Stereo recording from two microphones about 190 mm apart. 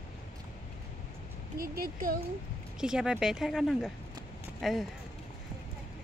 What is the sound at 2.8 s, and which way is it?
Speech, 5° right (ahead or behind).